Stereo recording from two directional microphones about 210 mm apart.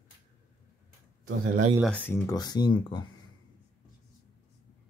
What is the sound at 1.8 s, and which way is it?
Speech, 10° left (ahead or behind).